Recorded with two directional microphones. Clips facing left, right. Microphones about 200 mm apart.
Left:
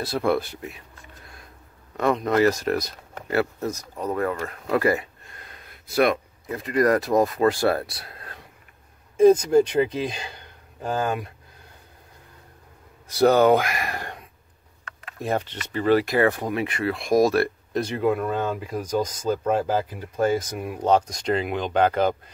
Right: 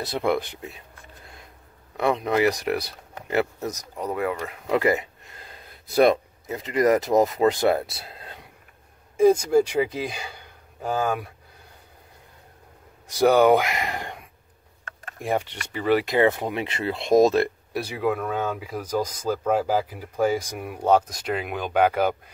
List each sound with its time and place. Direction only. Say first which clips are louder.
0.0 s speech: left 1 dB; 20° right (ahead or behind)
2.0 s speech: left 1 dB; 15° right (ahead or behind)
9.1 s speech: left 2 dB; 10° right (ahead or behind)
13.1 s speech: even; 15° right (ahead or behind)
15.1 s speech: even; 15° right (ahead or behind)
17.7 s speech: left 3 dB; 5° right (ahead or behind)